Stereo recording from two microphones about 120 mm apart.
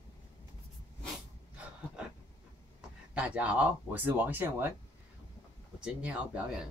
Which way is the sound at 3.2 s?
10° right (ahead or behind).